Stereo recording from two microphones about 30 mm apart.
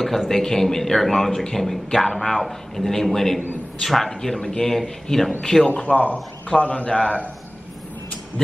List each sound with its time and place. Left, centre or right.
0.3 s a man's voice: centre
5.9 s speech: left
6.5 s a man's voice: left